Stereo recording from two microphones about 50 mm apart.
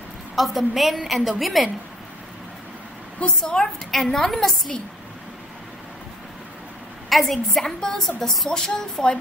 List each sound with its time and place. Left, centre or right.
0.4 s a woman's voice: centre
3.4 s speech: centre
3.9 s a woman's voice: centre
7.1 s speech: centre